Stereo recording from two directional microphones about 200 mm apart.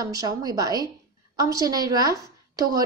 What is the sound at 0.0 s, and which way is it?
A woman's voice, 20° right (ahead or behind).